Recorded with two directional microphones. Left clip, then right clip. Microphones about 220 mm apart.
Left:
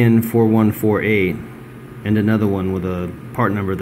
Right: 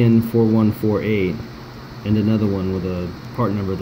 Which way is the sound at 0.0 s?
Centre (ahead or behind).